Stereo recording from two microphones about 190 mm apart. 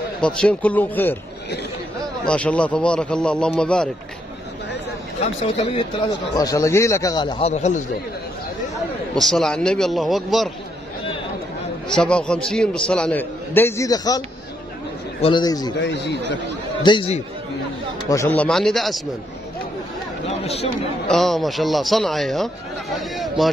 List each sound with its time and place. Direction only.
0.2 s speech: 5° left (ahead or behind)
2.2 s a man's voice: 5° left (ahead or behind)
5.2 s speech: 30° left (ahead or behind)
6.3 s speech: 15° left (ahead or behind); by 7.8 s 35° left (ahead or behind)
9.1 s a man's voice: centre (ahead or behind)
11.9 s a man's voice: 5° left (ahead or behind)
15.2 s speech: 20° left (ahead or behind)
15.8 s speech: 65° left (ahead or behind)
16.8 s speech: 25° left (ahead or behind)
18.1 s a man's voice: 10° left (ahead or behind)
20.2 s speech: 35° left (ahead or behind)
21.1 s a man's voice: centre (ahead or behind)